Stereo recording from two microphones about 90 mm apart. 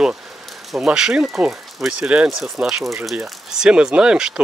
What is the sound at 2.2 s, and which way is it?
Speech, centre (ahead or behind).